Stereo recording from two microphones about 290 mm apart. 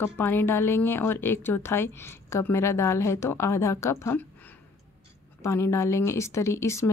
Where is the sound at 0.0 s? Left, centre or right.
Centre.